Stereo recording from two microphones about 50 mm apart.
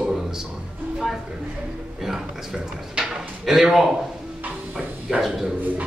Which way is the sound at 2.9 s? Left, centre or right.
Centre.